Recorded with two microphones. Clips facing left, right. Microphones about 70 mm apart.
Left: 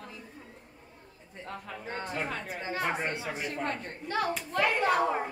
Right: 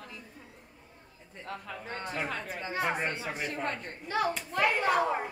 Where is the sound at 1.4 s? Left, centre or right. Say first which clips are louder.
Even; left.